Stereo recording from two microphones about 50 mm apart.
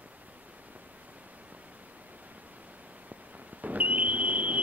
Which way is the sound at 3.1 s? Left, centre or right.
Right.